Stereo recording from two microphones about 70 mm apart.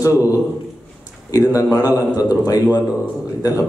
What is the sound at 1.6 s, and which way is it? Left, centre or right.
Speech, left.